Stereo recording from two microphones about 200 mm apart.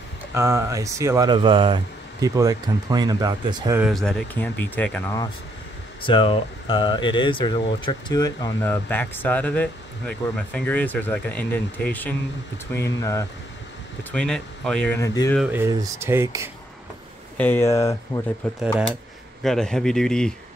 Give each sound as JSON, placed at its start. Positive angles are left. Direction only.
{"t": 0.3, "sound": "speech", "side_deg": -15}
{"t": 3.7, "sound": "speech", "side_deg": 0}
{"t": 6.0, "sound": "speech", "side_deg": 25}
{"t": 14.1, "sound": "speech", "side_deg": 5}
{"t": 15.0, "sound": "speech", "side_deg": 15}
{"t": 15.3, "sound": "speech", "side_deg": -5}
{"t": 17.4, "sound": "speech", "side_deg": 10}
{"t": 18.4, "sound": "speech", "side_deg": 5}